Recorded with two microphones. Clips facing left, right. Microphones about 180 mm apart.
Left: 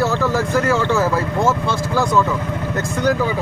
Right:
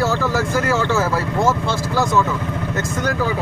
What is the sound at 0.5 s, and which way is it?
Speech, 5° right (ahead or behind).